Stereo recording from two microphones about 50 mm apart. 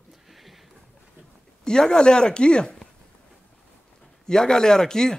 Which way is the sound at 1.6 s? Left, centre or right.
Centre.